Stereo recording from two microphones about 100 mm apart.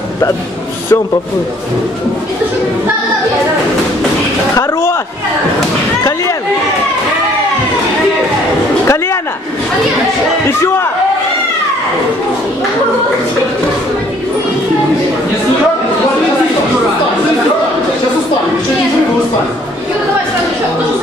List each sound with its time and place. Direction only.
4.6 s speech: 30° left (ahead or behind)
8.8 s a man's voice: 30° left (ahead or behind)